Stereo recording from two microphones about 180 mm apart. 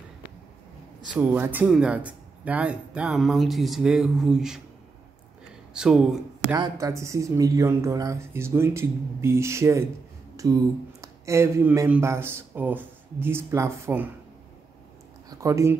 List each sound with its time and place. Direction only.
1.2 s speech: 10° right (ahead or behind)
5.7 s speech: 5° right (ahead or behind)
6.6 s speech: 15° right (ahead or behind)
15.2 s speech: 15° right (ahead or behind)